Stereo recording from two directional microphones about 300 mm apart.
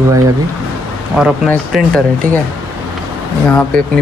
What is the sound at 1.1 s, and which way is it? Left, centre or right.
Speech, centre.